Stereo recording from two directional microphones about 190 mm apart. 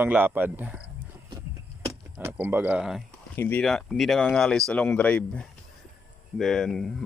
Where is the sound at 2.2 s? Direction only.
10° right (ahead or behind).